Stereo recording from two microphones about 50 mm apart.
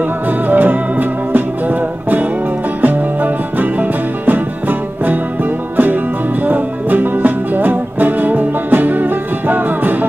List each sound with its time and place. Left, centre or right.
0.0 s music: right